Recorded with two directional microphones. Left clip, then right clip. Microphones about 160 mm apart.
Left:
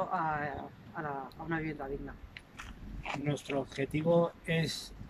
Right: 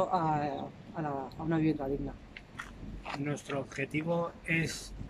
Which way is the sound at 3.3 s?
30° left (ahead or behind).